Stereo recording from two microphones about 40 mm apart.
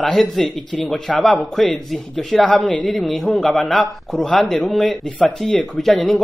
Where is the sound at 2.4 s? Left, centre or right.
Left.